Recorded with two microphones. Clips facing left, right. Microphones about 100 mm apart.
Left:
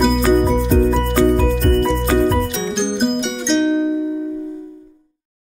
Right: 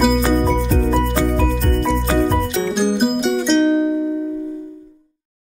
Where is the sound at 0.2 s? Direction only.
5° left (ahead or behind).